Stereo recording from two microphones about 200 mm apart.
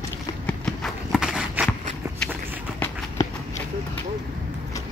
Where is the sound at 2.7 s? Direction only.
15° left (ahead or behind).